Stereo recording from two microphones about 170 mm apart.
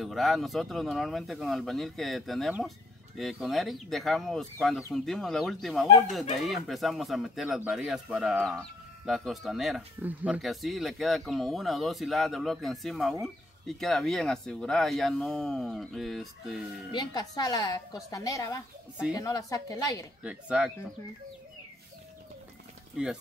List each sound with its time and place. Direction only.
0.0 s speech: centre (ahead or behind)
16.9 s a woman's voice: 25° left (ahead or behind)
20.2 s speech: 5° right (ahead or behind)